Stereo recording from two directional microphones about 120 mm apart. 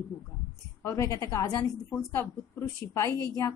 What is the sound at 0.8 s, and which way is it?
A woman's voice, 25° left (ahead or behind).